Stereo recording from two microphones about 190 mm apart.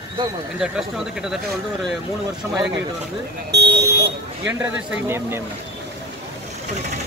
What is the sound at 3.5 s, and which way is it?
Speech, 60° right (ahead or behind).